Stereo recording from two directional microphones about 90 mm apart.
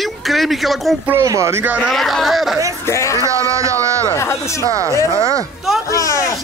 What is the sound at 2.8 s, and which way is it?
Speech, 35° left (ahead or behind).